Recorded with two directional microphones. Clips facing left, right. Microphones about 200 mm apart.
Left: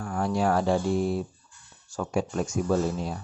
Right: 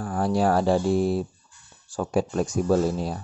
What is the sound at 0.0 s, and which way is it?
Speech, 35° right (ahead or behind).